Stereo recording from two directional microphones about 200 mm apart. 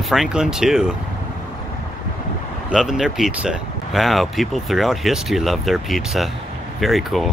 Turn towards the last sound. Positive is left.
turn(degrees=0)  # may be behind; listen again after turning